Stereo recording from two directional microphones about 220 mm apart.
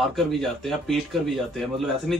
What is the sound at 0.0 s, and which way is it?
A man's voice, centre (ahead or behind).